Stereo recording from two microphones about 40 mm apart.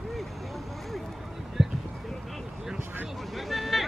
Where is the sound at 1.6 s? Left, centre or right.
Centre.